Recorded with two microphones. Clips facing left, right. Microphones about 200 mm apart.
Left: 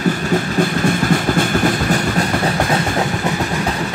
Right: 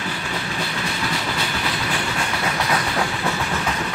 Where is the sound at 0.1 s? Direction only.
45° left (ahead or behind).